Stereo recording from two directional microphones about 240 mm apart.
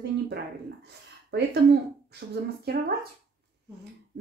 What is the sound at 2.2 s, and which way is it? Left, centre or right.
Speech, right.